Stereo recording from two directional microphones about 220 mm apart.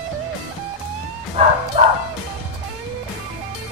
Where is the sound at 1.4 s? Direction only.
30° right (ahead or behind).